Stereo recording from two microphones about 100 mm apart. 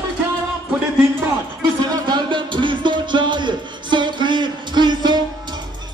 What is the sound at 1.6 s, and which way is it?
Music, 45° right (ahead or behind).